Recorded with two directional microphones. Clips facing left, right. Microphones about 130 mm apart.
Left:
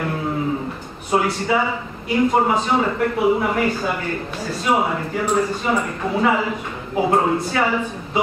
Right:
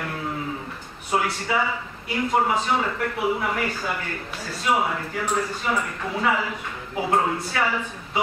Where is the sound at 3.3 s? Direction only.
25° left (ahead or behind).